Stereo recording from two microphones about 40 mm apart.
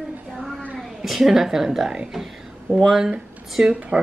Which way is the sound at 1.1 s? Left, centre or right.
Centre.